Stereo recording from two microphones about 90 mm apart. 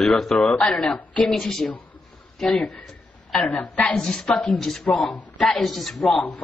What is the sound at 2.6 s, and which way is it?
A woman's voice, 15° left (ahead or behind).